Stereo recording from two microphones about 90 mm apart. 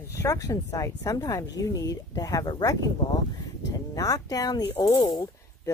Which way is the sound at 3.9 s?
40° left (ahead or behind).